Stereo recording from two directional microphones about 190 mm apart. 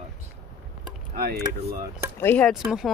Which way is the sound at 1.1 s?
50° right (ahead or behind).